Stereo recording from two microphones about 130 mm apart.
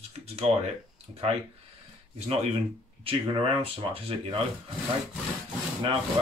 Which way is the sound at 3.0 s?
45° right (ahead or behind).